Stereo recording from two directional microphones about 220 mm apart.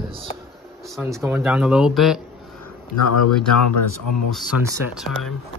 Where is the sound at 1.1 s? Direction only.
10° right (ahead or behind).